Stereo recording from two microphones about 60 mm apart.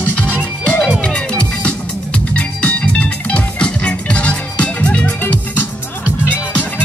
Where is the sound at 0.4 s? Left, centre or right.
Left.